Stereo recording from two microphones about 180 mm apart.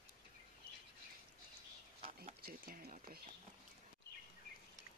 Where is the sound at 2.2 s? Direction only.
50° right (ahead or behind).